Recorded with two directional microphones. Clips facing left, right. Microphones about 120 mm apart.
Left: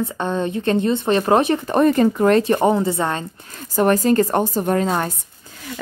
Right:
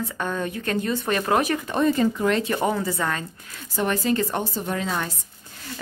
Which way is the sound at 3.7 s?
45° left (ahead or behind).